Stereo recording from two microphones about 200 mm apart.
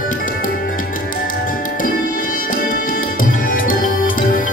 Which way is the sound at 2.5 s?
45° left (ahead or behind).